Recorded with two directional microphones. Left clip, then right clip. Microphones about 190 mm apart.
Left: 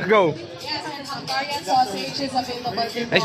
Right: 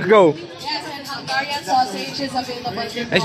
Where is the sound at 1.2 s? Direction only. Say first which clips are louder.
Right 4 dB; 20° left (ahead or behind).